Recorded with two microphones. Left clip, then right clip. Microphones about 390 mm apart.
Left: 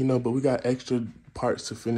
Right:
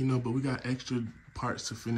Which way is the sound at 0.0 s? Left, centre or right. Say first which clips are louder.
Left 8 dB; centre.